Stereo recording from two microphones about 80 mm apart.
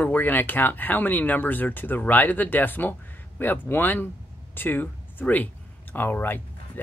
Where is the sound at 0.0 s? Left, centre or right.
Left.